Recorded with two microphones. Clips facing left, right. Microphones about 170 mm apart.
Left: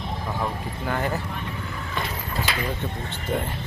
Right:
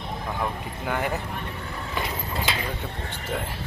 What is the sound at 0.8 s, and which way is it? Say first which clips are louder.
Speech: left 1 dB; 15° right (ahead or behind).